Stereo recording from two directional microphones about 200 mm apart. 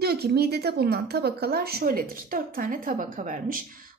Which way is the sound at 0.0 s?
55° right (ahead or behind).